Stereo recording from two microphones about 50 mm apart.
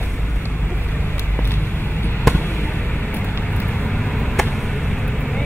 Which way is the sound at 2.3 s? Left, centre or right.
Left.